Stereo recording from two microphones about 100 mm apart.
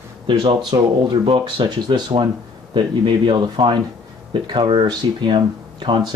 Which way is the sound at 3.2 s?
45° right (ahead or behind).